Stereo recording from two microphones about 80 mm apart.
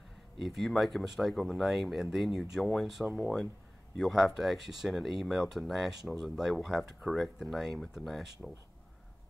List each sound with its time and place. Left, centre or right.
0.4 s speech: centre